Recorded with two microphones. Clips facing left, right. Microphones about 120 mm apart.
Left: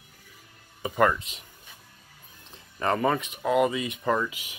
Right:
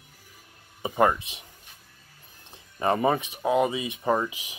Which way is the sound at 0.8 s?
20° right (ahead or behind).